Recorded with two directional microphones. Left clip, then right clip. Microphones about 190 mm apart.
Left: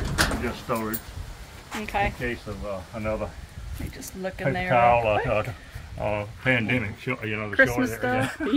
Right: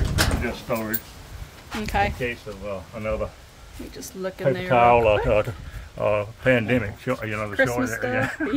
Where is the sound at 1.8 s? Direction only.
25° right (ahead or behind).